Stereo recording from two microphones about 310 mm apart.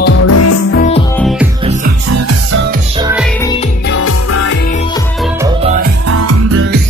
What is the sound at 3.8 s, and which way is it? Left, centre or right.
Music, left.